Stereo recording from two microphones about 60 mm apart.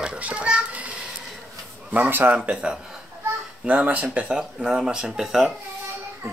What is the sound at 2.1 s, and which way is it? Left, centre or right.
Speech, right.